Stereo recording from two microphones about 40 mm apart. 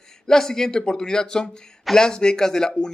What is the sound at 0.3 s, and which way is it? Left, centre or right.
Speech, centre.